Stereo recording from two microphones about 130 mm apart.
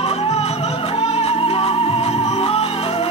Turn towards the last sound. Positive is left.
turn(degrees=50)  # may be behind; listen again after turning